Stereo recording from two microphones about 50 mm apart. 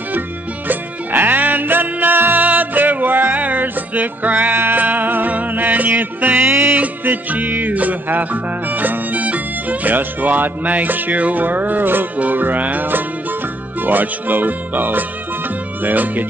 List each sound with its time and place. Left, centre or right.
0.7 s music: right
6.8 s music: right
12.2 s speech: right